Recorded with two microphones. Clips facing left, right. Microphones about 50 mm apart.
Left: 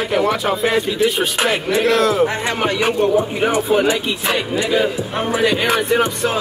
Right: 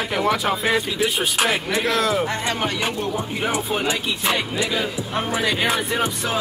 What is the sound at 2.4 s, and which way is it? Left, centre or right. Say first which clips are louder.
Speech: left 5 dB; left.